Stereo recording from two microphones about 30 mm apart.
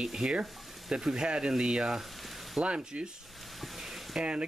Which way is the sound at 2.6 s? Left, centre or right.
Right.